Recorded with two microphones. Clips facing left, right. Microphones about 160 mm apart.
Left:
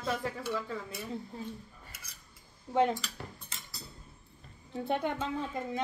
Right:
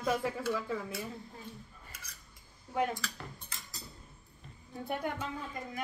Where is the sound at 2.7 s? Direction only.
25° left (ahead or behind).